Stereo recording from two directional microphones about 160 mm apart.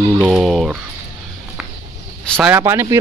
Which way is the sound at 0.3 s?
Centre (ahead or behind).